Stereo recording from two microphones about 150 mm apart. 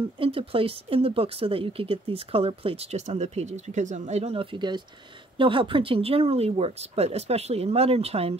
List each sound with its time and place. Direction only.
0.2 s speech: 40° right (ahead or behind)